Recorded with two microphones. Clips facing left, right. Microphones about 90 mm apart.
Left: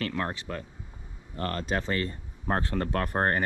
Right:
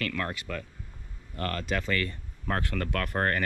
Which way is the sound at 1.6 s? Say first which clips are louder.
Even; 30° left (ahead or behind).